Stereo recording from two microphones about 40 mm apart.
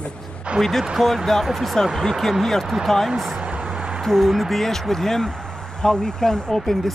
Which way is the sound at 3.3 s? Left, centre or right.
Right.